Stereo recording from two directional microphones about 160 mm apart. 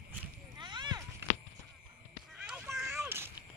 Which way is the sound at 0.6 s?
30° right (ahead or behind).